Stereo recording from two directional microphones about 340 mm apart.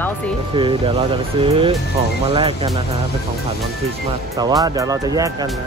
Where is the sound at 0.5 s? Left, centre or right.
Centre.